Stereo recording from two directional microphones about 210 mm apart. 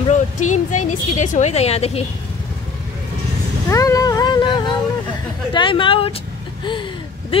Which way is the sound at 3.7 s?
15° left (ahead or behind).